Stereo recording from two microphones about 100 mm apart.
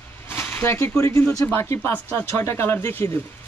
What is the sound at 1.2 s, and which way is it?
Speech, 15° left (ahead or behind).